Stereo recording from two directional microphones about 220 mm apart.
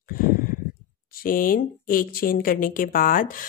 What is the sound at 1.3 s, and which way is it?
Speech, 40° left (ahead or behind).